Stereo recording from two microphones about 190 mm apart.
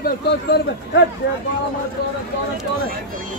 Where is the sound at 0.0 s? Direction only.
60° left (ahead or behind).